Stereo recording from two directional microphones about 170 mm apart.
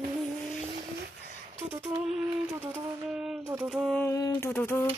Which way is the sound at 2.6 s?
10° right (ahead or behind).